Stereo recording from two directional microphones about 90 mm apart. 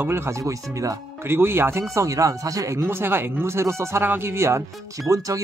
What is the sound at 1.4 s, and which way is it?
Speech, 25° right (ahead or behind).